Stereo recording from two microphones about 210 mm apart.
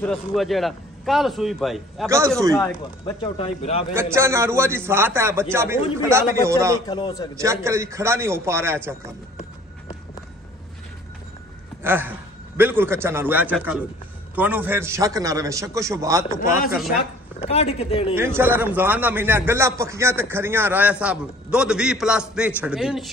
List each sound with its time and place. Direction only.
0.0 s a man's voice: centre (ahead or behind)
2.0 s a man's voice: 15° right (ahead or behind)
2.5 s speech: 15° left (ahead or behind)
3.9 s a man's voice: 10° right (ahead or behind)
6.9 s speech: 20° left (ahead or behind)
7.3 s a man's voice: 15° right (ahead or behind)
11.8 s a man's voice: 10° right (ahead or behind)
16.3 s speech: 40° left (ahead or behind)
17.4 s speech: 30° left (ahead or behind)
18.1 s a man's voice: 10° right (ahead or behind)